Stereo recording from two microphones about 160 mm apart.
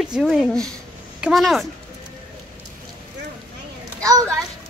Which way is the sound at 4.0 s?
20° right (ahead or behind).